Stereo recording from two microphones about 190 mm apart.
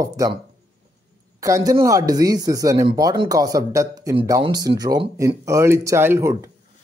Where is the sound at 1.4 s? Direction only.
15° right (ahead or behind).